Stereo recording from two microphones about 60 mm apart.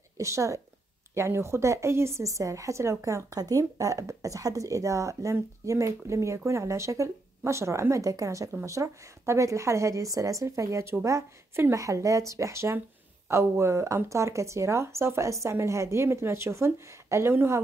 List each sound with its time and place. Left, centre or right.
0.2 s a woman's voice: right
11.7 s a woman's voice: right